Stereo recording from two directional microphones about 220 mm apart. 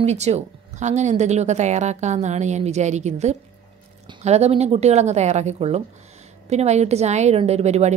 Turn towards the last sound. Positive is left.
turn(degrees=-30)  # may be behind; listen again after turning